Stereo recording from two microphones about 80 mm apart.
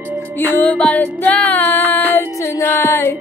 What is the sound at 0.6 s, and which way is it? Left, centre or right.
Music, centre.